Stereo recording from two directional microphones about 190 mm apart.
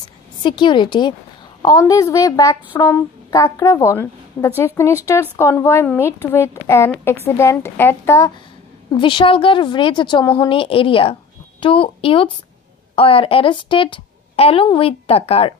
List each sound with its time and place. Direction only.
0.4 s a woman's voice: 25° left (ahead or behind)
8.9 s a woman's voice: 25° left (ahead or behind)